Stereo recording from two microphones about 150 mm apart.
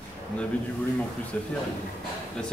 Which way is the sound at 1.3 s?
10° left (ahead or behind).